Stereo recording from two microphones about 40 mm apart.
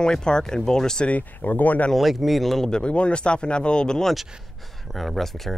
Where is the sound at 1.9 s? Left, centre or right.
Centre.